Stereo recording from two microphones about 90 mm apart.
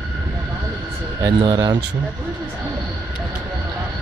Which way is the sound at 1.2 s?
55° right (ahead or behind).